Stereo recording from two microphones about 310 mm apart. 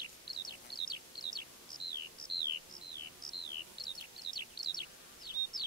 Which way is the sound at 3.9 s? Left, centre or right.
Centre.